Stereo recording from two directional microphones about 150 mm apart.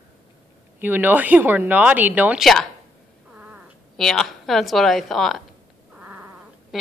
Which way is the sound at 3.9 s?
Centre (ahead or behind).